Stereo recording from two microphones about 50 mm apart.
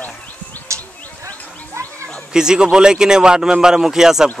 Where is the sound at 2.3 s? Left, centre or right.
Centre.